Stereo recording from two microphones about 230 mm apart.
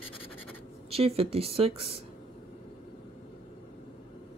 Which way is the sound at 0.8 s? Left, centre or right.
Right.